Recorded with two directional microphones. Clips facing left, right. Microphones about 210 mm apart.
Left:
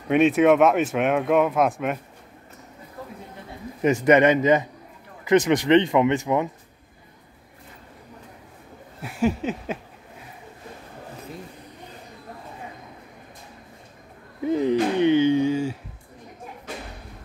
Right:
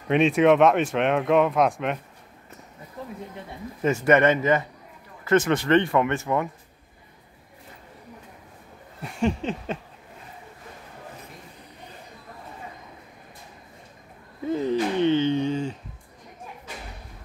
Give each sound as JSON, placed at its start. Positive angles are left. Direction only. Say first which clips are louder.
{"t": 0.1, "sound": "speech", "louder": "left 1 dB", "side_deg": 5}
{"t": 3.8, "sound": "speech", "louder": "left 2 dB", "side_deg": 15}
{"t": 9.0, "sound": "speech", "louder": "left 2 dB", "side_deg": 5}
{"t": 14.4, "sound": "a sound", "louder": "left 3 dB", "side_deg": 15}